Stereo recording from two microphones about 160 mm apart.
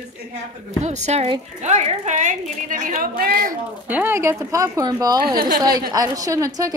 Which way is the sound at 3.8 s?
10° right (ahead or behind).